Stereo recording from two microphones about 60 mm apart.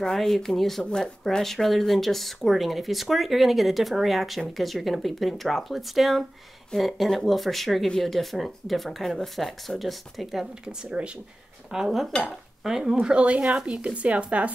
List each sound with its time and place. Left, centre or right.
0.0 s speech: centre
11.7 s cutlery: centre
12.3 s dishes: centre
13.0 s speech: centre